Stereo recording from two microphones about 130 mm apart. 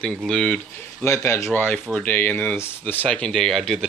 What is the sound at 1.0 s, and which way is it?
A man's voice, 20° left (ahead or behind).